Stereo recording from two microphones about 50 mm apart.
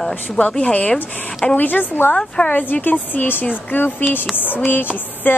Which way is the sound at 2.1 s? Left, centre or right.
Centre.